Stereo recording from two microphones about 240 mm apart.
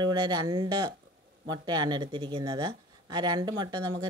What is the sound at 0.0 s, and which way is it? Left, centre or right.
Speech, centre.